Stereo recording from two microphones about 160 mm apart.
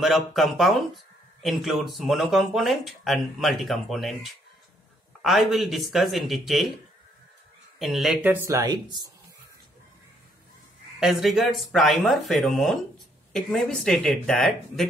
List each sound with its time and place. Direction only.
0.0 s speech: centre (ahead or behind)
7.8 s speech: centre (ahead or behind); by 9.1 s 25° right (ahead or behind)
11.0 s speech: centre (ahead or behind)